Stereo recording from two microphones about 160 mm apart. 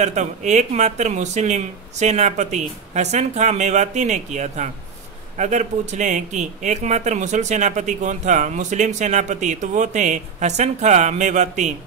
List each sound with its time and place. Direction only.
0.0 s speech: 50° right (ahead or behind)